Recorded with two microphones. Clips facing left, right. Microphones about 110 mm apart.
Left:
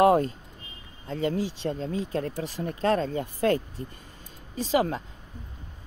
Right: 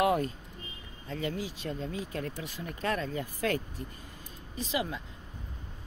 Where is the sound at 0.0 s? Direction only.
35° left (ahead or behind).